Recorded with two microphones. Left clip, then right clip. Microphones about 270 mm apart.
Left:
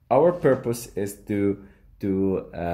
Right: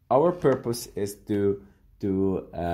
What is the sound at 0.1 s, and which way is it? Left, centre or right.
Speech, centre.